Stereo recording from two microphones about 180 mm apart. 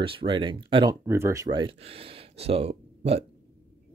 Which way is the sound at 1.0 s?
15° right (ahead or behind).